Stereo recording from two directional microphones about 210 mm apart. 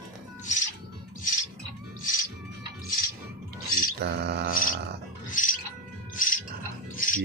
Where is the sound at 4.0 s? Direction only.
50° right (ahead or behind).